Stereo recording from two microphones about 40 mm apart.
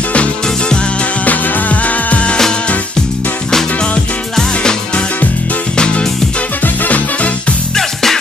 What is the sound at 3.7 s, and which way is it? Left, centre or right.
Music, left.